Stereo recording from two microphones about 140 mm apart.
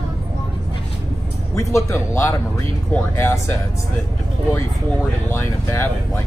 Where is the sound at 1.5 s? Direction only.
20° left (ahead or behind).